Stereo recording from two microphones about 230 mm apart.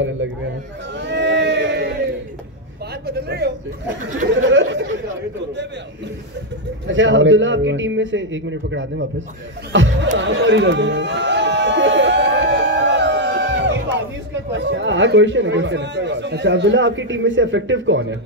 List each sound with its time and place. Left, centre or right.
0.9 s a sound: right
3.1 s speech: right
6.9 s speech: right
10.1 s chatter: right
14.5 s speech: right